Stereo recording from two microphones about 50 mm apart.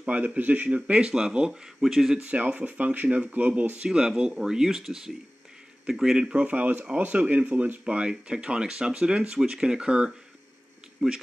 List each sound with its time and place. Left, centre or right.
0.0 s speech: right
1.5 s speech: centre
2.2 s speech: right
3.8 s speech: centre
6.4 s speech: right
7.8 s speech: centre